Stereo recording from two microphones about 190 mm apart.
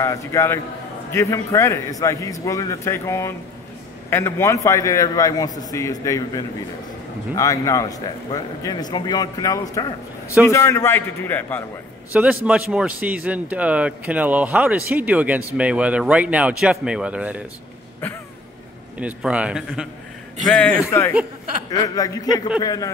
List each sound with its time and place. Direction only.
0.0 s a man's voice: 15° left (ahead or behind)
12.1 s a man's voice: 10° right (ahead or behind)
18.9 s a man's voice: 5° right (ahead or behind); by 22.8 s 20° left (ahead or behind)